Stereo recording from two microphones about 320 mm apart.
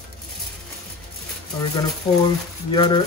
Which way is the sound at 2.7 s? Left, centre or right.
Centre.